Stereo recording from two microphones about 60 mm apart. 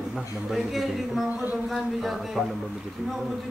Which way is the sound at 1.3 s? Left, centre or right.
Right.